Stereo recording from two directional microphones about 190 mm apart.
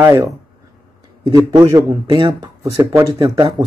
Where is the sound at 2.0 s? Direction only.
25° right (ahead or behind).